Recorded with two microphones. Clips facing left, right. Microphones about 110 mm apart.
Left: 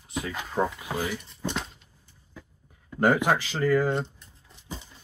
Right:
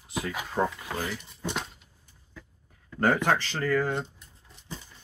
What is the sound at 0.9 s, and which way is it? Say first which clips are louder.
Speech: left 3 dB; 15° left (ahead or behind).